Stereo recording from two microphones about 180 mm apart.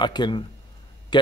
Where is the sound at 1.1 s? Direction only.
25° left (ahead or behind).